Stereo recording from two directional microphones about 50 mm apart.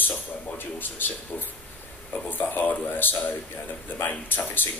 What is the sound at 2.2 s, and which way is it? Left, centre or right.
Speech, left.